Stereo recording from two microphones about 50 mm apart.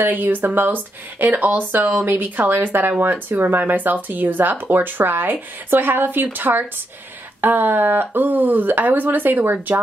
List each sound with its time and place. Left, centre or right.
0.0 s speech: right